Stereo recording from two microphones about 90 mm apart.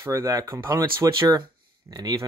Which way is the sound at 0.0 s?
30° right (ahead or behind).